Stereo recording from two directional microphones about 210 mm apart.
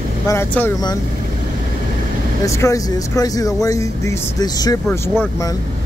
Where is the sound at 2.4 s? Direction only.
15° left (ahead or behind).